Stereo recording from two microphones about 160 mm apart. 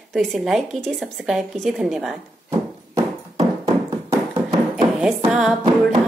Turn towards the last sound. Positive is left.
turn(degrees=0)  # may be behind; listen again after turning